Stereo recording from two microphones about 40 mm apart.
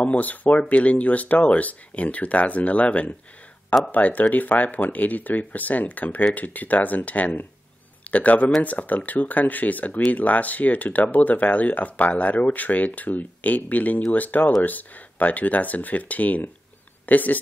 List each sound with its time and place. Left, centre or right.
0.0 s speech: left